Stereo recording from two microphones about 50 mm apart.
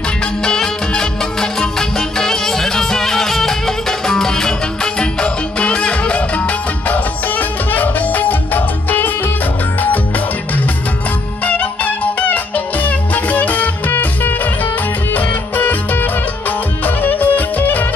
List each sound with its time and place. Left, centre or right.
0.4 s music: centre; by 9.1 s left
11.4 s music: left